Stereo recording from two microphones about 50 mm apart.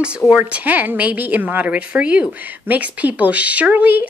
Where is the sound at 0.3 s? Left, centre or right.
Right.